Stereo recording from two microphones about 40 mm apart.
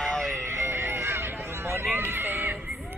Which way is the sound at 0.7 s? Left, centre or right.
Right.